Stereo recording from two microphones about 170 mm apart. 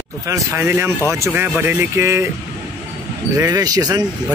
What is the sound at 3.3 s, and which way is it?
Speech, 20° right (ahead or behind).